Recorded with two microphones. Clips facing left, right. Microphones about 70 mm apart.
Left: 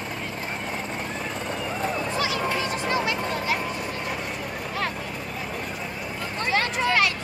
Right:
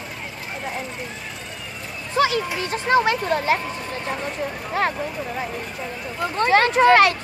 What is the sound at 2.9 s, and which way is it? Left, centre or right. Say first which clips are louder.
Speech: right 10 dB; right.